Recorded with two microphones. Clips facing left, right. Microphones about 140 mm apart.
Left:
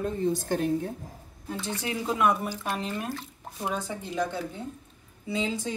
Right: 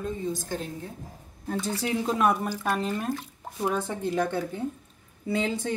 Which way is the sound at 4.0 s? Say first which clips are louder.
Right 4 dB; 55° right (ahead or behind).